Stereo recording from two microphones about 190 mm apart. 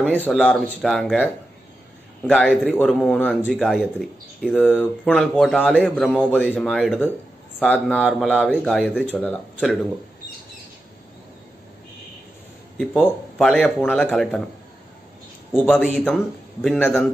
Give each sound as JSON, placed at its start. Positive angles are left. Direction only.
{"t": 0.0, "sound": "a man's voice", "side_deg": 10}
{"t": 12.7, "sound": "a man's voice", "side_deg": 5}
{"t": 15.5, "sound": "a man's voice", "side_deg": 5}